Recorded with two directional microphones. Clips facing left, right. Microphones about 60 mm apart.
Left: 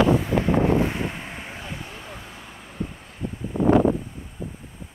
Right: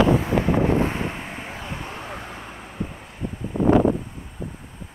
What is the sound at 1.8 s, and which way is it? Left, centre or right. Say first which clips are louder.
Vehicle: right 5 dB; right.